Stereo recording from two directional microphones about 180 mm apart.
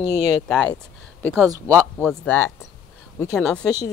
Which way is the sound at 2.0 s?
10° left (ahead or behind).